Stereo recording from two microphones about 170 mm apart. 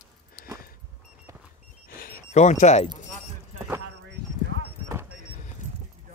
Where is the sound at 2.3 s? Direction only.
45° left (ahead or behind).